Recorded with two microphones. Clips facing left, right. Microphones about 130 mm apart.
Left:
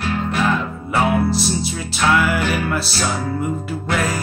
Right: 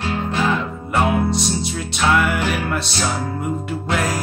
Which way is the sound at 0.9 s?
Centre (ahead or behind).